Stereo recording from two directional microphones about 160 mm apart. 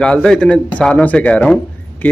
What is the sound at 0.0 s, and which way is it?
Speech, 5° left (ahead or behind).